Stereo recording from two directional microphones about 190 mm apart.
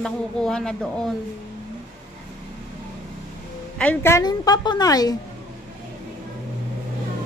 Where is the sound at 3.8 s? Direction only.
10° left (ahead or behind).